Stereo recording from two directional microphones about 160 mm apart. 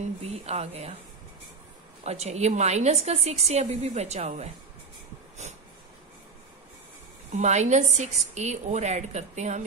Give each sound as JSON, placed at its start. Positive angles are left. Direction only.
{"t": 0.2, "sound": "speech", "side_deg": -40}
{"t": 2.0, "sound": "a woman's voice", "side_deg": -40}
{"t": 5.4, "sound": "snort", "side_deg": -45}
{"t": 7.3, "sound": "a woman's voice", "side_deg": -45}